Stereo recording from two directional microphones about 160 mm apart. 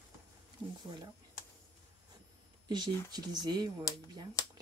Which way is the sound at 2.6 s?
25° right (ahead or behind).